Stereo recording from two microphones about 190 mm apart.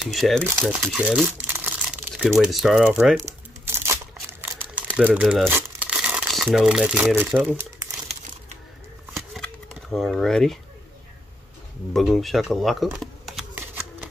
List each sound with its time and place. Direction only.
0.0 s speech: centre (ahead or behind)
3.3 s crumpling: 15° right (ahead or behind)
9.3 s a sound: centre (ahead or behind)
11.9 s speech: centre (ahead or behind)